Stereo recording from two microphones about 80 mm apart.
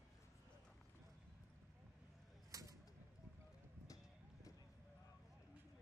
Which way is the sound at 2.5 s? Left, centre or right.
Right.